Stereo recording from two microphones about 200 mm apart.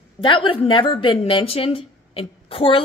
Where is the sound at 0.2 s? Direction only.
25° left (ahead or behind).